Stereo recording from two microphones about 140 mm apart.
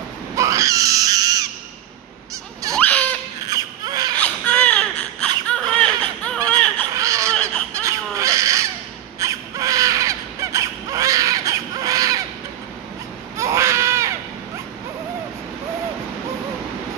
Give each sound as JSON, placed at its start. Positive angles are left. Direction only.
{"t": 0.4, "sound": "crying", "side_deg": -25}
{"t": 2.7, "sound": "crying", "side_deg": 10}
{"t": 3.4, "sound": "baby cry", "side_deg": -25}
{"t": 4.2, "sound": "baby cry", "side_deg": 10}
{"t": 5.5, "sound": "laughter", "side_deg": 10}
{"t": 6.9, "sound": "laughter", "side_deg": -20}
{"t": 7.7, "sound": "crow", "side_deg": -20}
{"t": 9.2, "sound": "wail", "side_deg": -25}
{"t": 13.4, "sound": "baby cry", "side_deg": -20}